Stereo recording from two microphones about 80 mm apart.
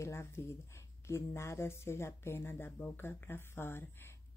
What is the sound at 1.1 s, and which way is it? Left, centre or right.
Speech, left.